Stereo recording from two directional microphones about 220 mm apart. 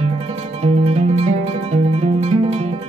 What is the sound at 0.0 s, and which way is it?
Music, 30° right (ahead or behind).